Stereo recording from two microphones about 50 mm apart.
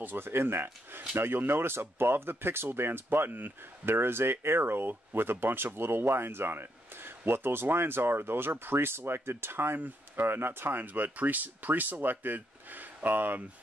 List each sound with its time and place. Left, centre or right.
0.0 s speech: right